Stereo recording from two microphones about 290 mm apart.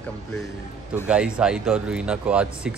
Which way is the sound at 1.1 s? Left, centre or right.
Centre.